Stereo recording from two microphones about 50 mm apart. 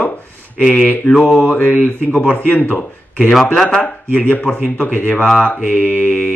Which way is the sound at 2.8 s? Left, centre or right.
Centre.